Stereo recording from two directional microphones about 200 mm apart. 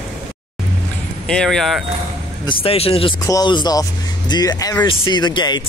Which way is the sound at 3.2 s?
20° left (ahead or behind).